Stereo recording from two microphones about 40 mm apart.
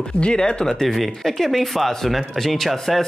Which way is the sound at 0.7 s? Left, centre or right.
Centre.